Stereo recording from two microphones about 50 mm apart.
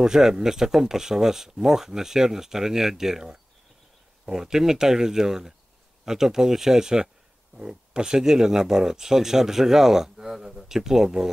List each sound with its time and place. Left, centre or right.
0.0 s speech: centre